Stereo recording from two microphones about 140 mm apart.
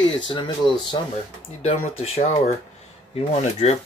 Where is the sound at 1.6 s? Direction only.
45° left (ahead or behind).